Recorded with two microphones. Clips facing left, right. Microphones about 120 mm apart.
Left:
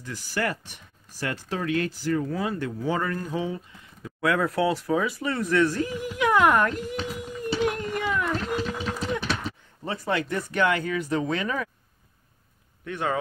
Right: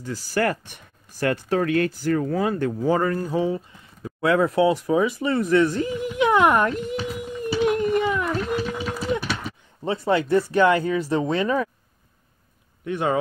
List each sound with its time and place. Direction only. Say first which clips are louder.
0.0 s speech: right 6 dB; 30° right (ahead or behind)
0.4 s speech: right 5 dB; 50° right (ahead or behind); by 7.0 s 20° right (ahead or behind)
7.6 s a sound: right 8 dB; 20° right (ahead or behind)
8.5 s a sound: right 2 dB; 10° right (ahead or behind)
9.8 s speech: right 6 dB; 25° right (ahead or behind)
12.8 s speech: right 5 dB; 20° right (ahead or behind)